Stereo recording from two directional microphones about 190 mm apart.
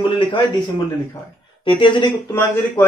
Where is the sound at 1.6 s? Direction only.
25° left (ahead or behind).